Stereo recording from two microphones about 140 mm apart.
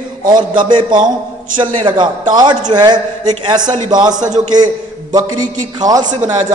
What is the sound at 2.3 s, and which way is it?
A man's voice, 30° right (ahead or behind).